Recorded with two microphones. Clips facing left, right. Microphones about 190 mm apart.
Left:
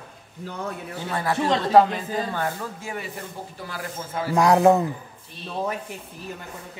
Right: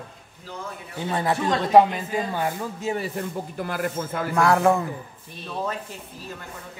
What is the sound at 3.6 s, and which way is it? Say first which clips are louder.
Speech: right 7 dB; 55° right (ahead or behind).